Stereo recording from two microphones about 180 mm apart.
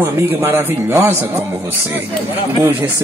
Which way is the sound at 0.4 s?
15° right (ahead or behind).